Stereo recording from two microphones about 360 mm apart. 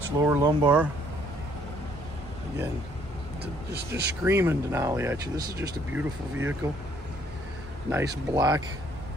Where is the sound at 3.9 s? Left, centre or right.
Centre.